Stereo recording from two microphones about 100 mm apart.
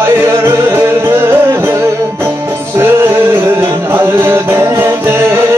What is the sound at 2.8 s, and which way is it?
Music, 20° right (ahead or behind).